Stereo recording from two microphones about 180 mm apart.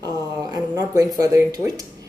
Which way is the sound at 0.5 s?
20° right (ahead or behind).